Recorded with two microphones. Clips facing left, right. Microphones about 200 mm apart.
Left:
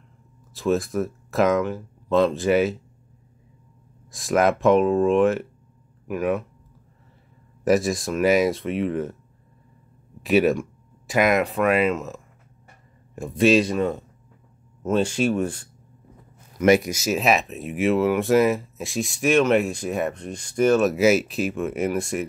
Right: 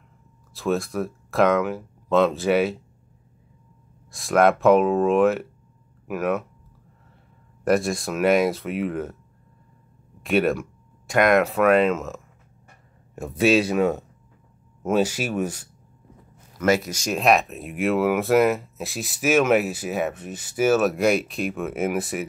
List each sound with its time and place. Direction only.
0.6 s speech: centre (ahead or behind)
4.1 s speech: centre (ahead or behind)
7.6 s speech: centre (ahead or behind)
10.2 s speech: centre (ahead or behind)
16.5 s speech: 15° left (ahead or behind)
16.9 s speech: 5° left (ahead or behind)